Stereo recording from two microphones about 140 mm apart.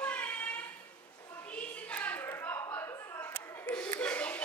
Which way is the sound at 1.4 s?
10° left (ahead or behind).